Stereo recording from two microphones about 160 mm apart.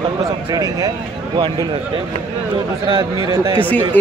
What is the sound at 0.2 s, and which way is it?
Speech, 25° right (ahead or behind).